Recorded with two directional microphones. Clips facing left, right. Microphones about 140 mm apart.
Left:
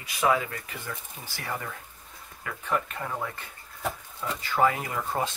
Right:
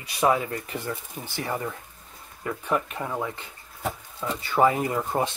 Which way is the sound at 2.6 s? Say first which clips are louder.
Right 2 dB; 15° right (ahead or behind).